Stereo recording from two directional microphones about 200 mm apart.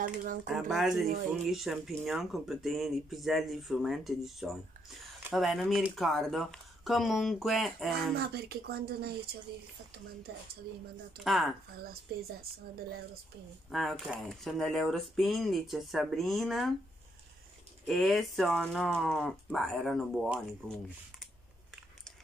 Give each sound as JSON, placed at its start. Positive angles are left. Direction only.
{"t": 0.0, "sound": "a woman's voice", "side_deg": -45}
{"t": 0.7, "sound": "speech", "side_deg": 0}
{"t": 8.2, "sound": "a woman's voice", "side_deg": -50}
{"t": 11.2, "sound": "speech", "side_deg": 0}
{"t": 11.8, "sound": "a woman's voice", "side_deg": -50}
{"t": 13.7, "sound": "speech", "side_deg": 0}
{"t": 17.8, "sound": "speech", "side_deg": 0}